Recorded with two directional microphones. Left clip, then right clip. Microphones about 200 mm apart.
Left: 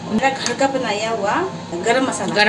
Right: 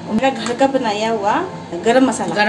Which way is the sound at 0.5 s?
35° right (ahead or behind).